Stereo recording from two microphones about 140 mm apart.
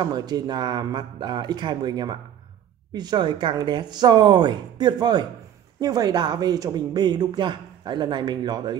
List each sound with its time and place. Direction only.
0.0 s speech: 30° right (ahead or behind)